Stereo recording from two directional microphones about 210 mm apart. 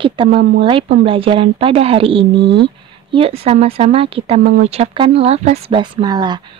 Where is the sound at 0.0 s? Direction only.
25° right (ahead or behind).